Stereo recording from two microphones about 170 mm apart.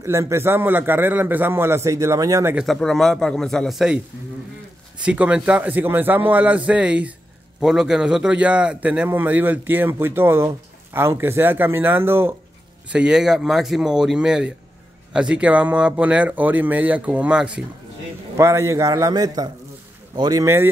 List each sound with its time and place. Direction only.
0.0 s a man's voice: 15° right (ahead or behind)
2.5 s speech: centre (ahead or behind)
5.0 s a man's voice: 5° right (ahead or behind)
18.3 s a man's voice: 15° right (ahead or behind)